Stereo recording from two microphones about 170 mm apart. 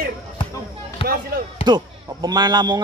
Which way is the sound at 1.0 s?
30° left (ahead or behind).